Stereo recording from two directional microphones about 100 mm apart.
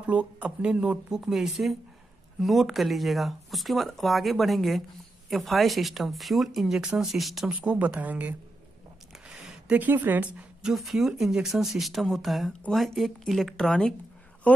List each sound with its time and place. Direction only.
0.0 s speech: 10° right (ahead or behind)
7.5 s speech: 15° right (ahead or behind)
9.3 s a sound: 15° right (ahead or behind)
10.7 s speech: centre (ahead or behind)